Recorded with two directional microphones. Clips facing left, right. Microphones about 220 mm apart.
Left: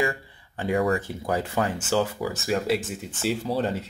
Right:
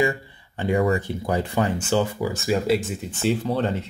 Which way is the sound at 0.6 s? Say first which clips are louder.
Right 2 dB; centre (ahead or behind).